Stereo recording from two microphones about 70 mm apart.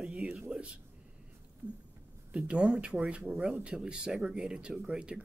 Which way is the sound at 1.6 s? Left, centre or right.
Right.